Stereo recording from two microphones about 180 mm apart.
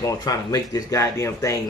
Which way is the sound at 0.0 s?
20° left (ahead or behind).